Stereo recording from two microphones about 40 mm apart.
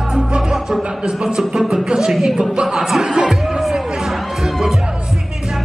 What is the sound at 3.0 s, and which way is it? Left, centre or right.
Music, centre.